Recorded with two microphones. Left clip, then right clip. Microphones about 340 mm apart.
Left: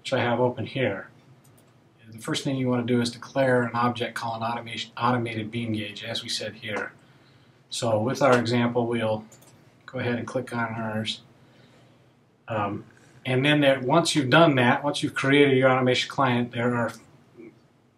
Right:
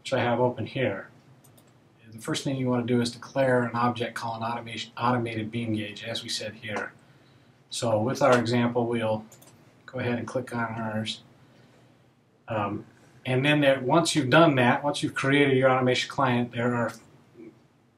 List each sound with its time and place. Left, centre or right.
0.0 s speech: centre
2.0 s speech: centre
13.2 s speech: centre